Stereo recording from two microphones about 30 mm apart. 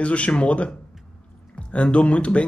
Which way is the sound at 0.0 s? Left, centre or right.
Left.